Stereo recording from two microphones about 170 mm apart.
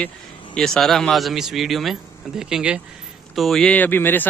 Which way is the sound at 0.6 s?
Centre (ahead or behind).